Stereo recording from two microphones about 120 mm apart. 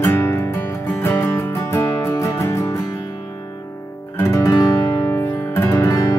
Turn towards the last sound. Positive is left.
turn(degrees=25)  # may be behind; listen again after turning